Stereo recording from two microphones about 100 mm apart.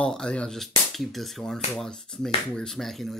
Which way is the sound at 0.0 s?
10° left (ahead or behind).